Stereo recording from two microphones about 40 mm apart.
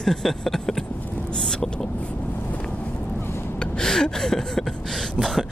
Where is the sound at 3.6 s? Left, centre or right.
Centre.